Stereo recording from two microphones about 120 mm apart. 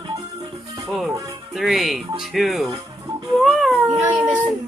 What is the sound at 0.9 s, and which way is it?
Speech, centre (ahead or behind).